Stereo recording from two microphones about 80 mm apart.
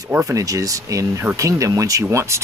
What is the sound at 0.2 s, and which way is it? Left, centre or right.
Speech, right.